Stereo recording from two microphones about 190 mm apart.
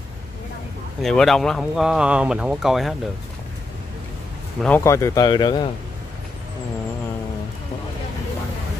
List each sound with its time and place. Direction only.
1.0 s speech: centre (ahead or behind)
4.6 s speech: 10° left (ahead or behind)